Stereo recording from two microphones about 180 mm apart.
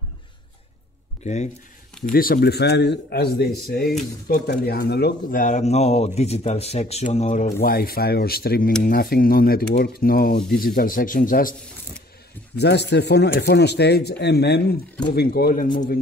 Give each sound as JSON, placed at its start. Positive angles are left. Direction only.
{"t": 1.2, "sound": "speech", "side_deg": 40}
{"t": 2.1, "sound": "speech", "side_deg": 55}
{"t": 7.6, "sound": "speech", "side_deg": 55}
{"t": 12.5, "sound": "speech", "side_deg": 70}